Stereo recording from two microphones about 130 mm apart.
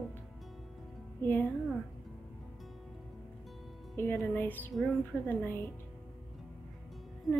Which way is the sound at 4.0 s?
15° left (ahead or behind).